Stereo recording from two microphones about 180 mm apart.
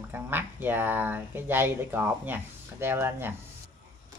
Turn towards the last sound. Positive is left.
turn(degrees=-10)  # may be behind; listen again after turning